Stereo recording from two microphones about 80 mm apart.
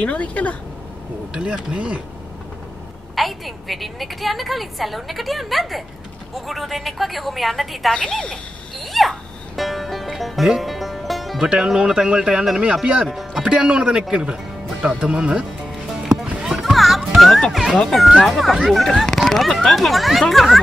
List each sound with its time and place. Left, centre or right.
0.0 s speech: centre
1.3 s speech: centre
3.2 s a woman's voice: centre
13.1 s speech: centre
13.4 s speech: centre
15.7 s music: centre
17.8 s a woman's voice: centre